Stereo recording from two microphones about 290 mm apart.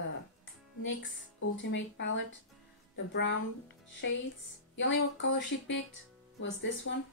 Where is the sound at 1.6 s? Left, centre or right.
Left.